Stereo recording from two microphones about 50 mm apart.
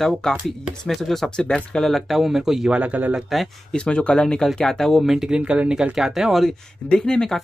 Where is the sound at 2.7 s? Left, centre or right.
Right.